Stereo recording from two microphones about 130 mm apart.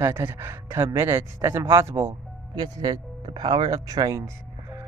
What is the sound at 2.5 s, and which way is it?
Speech, 30° right (ahead or behind).